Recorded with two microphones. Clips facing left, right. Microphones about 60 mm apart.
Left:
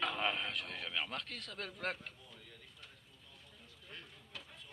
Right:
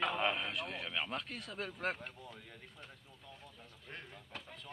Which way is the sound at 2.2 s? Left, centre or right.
Right.